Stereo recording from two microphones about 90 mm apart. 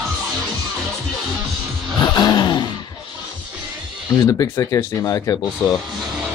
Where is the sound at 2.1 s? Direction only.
50° left (ahead or behind).